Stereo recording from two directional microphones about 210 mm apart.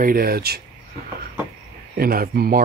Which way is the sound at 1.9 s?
45° right (ahead or behind).